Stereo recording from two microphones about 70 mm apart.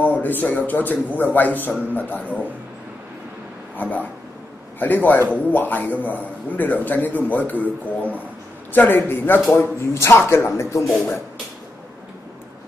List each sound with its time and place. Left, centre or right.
0.0 s a man's voice: left
3.7 s a man's voice: left
9.6 s speech: left
10.8 s a man's voice: centre